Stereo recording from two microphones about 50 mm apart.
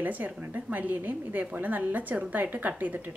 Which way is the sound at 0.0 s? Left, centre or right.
Right.